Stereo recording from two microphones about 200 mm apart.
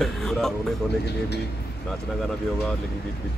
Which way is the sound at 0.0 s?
Centre (ahead or behind).